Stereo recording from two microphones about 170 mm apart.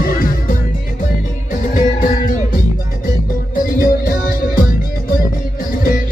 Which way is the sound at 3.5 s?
55° left (ahead or behind).